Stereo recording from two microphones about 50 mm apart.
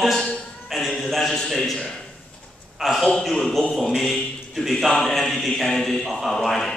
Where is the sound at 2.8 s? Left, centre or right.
Centre.